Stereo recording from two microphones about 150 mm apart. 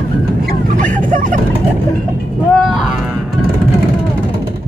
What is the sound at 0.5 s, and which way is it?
Vehicle, 60° right (ahead or behind).